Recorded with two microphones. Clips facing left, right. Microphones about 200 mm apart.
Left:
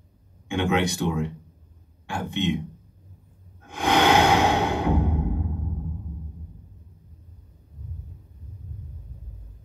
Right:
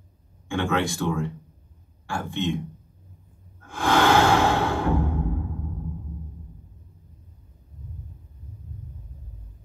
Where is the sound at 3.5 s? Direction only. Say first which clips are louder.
Even; 20° left (ahead or behind).